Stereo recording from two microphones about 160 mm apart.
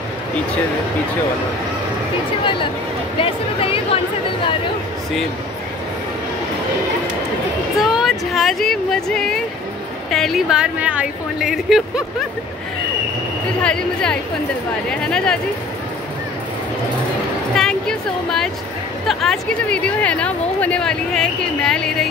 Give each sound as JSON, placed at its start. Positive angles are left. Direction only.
{"t": 3.2, "sound": "speech", "side_deg": 35}
{"t": 7.7, "sound": "speech", "side_deg": 0}
{"t": 13.6, "sound": "speech", "side_deg": 5}
{"t": 17.6, "sound": "a sound", "side_deg": 5}
{"t": 19.0, "sound": "speech", "side_deg": 0}